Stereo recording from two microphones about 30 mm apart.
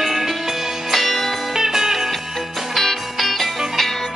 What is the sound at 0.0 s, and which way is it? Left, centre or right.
Music, centre.